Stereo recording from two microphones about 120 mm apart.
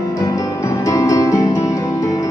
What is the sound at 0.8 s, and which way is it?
Music, 30° left (ahead or behind).